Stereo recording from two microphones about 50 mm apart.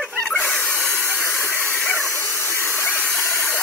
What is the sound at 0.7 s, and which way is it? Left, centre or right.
Steam, left.